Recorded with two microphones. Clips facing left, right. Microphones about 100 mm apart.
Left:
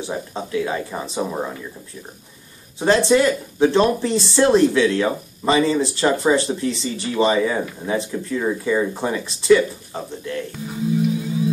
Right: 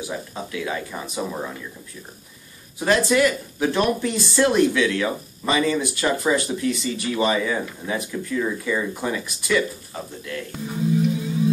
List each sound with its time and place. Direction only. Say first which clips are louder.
0.0 s speech: left 3 dB; 30° left (ahead or behind)
2.8 s speech: left 3 dB; 25° left (ahead or behind)